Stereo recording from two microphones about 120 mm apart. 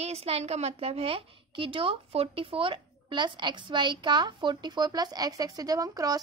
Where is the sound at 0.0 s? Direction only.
60° right (ahead or behind).